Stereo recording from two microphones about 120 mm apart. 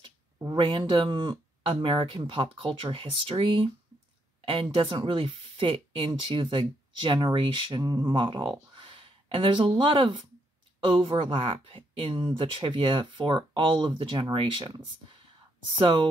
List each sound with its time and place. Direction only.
0.5 s speech: 40° right (ahead or behind)
4.7 s speech: 45° right (ahead or behind)